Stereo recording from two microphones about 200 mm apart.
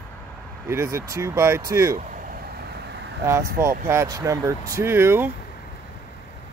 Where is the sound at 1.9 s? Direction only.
45° right (ahead or behind).